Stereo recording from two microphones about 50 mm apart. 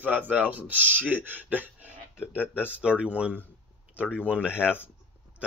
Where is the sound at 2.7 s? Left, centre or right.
Right.